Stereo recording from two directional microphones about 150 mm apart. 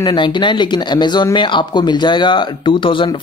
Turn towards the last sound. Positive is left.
turn(degrees=35)  # may be behind; listen again after turning